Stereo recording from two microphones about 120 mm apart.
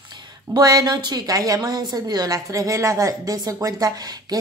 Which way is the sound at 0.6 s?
35° right (ahead or behind).